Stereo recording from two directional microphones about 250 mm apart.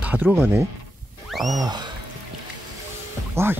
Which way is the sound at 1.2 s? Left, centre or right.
Centre.